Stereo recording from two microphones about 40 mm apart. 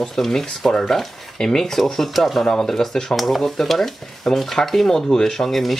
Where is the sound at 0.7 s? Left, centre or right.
Centre.